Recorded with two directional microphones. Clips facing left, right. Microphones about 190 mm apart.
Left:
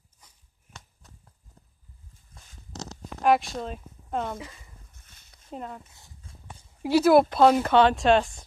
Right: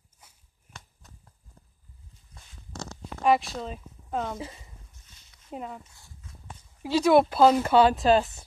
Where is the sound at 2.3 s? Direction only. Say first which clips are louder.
Even; 50° left (ahead or behind).